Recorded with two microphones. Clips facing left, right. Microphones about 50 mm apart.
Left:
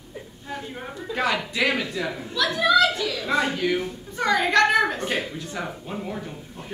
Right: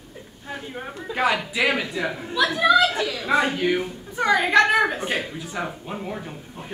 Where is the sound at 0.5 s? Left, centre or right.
Centre.